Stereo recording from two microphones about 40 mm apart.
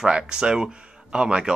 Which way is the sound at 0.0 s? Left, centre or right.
Centre.